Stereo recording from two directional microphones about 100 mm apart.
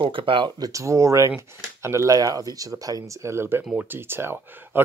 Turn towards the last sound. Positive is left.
turn(degrees=-20)  # may be behind; listen again after turning